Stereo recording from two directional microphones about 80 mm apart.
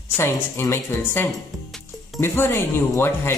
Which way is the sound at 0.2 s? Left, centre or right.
Left.